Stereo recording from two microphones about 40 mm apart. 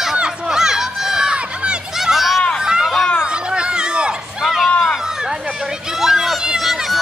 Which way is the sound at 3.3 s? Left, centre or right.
Right.